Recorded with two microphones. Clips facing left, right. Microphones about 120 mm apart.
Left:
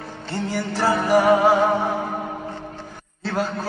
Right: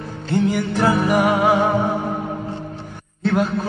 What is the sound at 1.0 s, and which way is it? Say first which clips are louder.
Speech: left 1 dB; 35° left (ahead or behind).